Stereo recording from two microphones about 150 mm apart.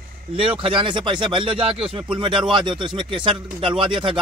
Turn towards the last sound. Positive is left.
turn(degrees=-35)  # may be behind; listen again after turning